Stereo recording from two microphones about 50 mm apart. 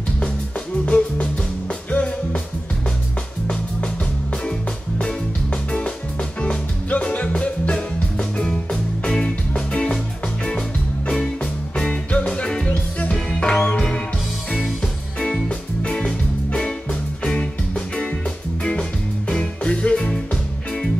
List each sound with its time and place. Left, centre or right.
0.8 s music: left
4.5 s music: left
8.2 s music: centre
11.7 s music: left
15.1 s music: centre